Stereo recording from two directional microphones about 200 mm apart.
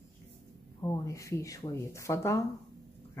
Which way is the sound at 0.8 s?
15° left (ahead or behind).